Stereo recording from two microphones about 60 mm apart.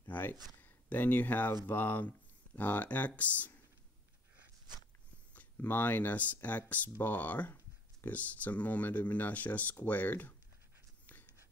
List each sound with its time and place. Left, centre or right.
0.1 s speech: left
5.3 s speech: left